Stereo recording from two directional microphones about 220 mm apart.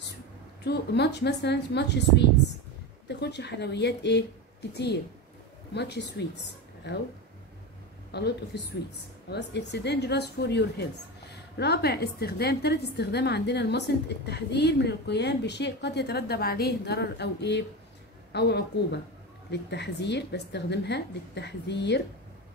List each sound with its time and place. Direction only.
0.7 s a woman's voice: 50° left (ahead or behind)
8.1 s a woman's voice: 50° left (ahead or behind)